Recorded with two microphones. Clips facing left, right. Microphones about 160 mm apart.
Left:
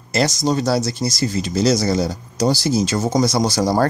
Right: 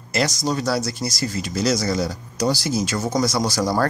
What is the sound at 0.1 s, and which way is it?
Speech, 25° left (ahead or behind).